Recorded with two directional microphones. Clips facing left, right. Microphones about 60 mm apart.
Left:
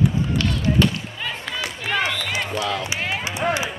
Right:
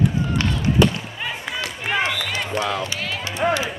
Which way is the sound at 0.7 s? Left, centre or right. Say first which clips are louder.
Right 2 dB; centre.